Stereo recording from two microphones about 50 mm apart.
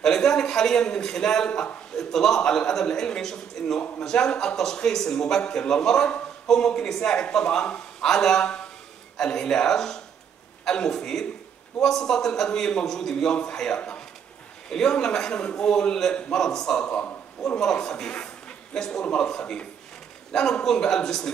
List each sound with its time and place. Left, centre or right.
0.0 s a man's voice: centre
16.8 s a man's voice: left
17.6 s a man's voice: centre